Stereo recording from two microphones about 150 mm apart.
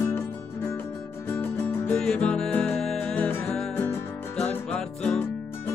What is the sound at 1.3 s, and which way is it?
Music, 15° left (ahead or behind).